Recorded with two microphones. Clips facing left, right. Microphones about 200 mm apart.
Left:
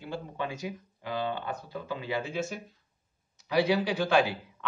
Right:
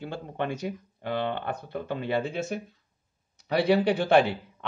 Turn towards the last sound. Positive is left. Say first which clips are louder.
# right 4 dB
turn(degrees=-60)  # may be behind; listen again after turning